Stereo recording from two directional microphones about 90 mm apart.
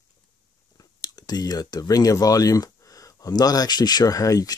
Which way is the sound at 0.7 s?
50° left (ahead or behind).